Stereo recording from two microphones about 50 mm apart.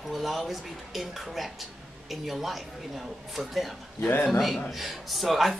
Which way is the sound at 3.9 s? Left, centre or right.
Left.